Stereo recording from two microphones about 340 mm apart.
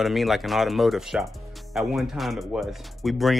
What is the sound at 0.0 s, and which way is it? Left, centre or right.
Speech, centre.